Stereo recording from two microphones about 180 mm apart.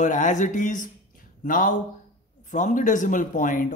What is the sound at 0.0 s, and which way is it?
A man's voice, 45° left (ahead or behind).